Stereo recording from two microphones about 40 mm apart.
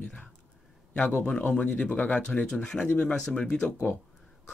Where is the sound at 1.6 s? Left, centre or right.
Left.